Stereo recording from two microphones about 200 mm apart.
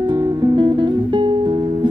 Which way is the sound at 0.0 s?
20° right (ahead or behind).